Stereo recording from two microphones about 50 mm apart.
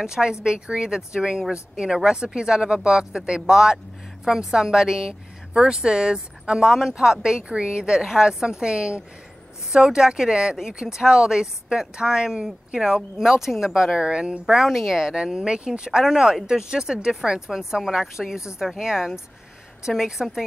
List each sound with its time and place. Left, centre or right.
0.0 s a woman's voice: centre
14.4 s a woman's voice: centre